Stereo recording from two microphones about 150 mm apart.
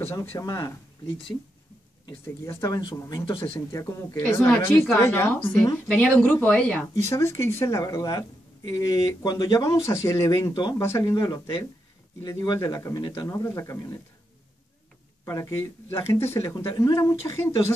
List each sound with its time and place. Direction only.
0.0 s speech: 15° left (ahead or behind)
2.2 s speech: 20° left (ahead or behind); by 3.6 s 35° left (ahead or behind)
3.7 s speech: 15° left (ahead or behind)
7.1 s speech: 20° left (ahead or behind)
15.2 s speech: 20° left (ahead or behind)